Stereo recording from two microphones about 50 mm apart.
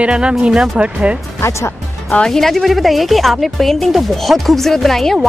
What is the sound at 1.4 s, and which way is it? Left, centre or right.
Speech, left.